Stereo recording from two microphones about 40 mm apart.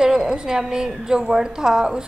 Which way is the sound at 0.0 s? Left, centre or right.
Centre.